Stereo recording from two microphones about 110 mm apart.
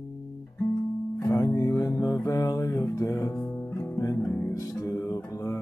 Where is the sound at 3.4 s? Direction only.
15° left (ahead or behind).